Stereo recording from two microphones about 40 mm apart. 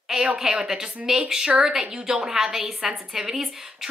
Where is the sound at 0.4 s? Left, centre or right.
Centre.